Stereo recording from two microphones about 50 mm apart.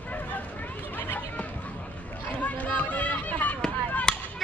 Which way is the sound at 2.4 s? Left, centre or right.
Left.